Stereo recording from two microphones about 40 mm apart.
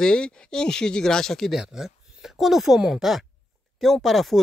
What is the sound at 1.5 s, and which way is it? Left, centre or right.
Speech, centre.